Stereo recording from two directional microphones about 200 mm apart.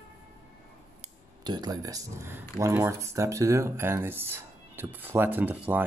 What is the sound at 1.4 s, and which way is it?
Speech, 20° right (ahead or behind).